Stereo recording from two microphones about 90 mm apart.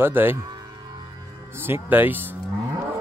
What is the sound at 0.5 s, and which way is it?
Music, 50° right (ahead or behind).